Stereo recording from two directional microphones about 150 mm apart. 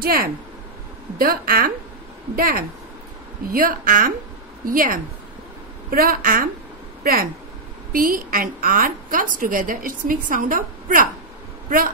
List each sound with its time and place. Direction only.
0.0 s a woman's voice: 80° right; by 11.1 s 65° right (ahead or behind)